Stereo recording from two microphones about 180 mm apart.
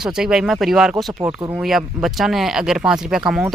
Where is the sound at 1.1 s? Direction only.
15° right (ahead or behind).